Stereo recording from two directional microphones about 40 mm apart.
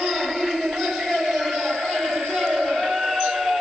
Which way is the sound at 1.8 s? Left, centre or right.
Centre.